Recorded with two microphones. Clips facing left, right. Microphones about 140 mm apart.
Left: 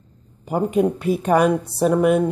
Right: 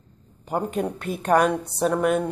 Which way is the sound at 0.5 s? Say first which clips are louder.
Left 6 dB; 5° left (ahead or behind).